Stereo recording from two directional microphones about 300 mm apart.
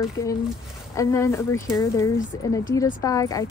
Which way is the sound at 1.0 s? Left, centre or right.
Centre.